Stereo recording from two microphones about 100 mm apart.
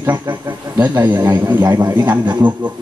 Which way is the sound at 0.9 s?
20° right (ahead or behind).